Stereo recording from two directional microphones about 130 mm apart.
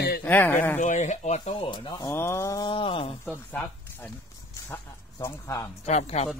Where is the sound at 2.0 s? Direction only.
20° left (ahead or behind).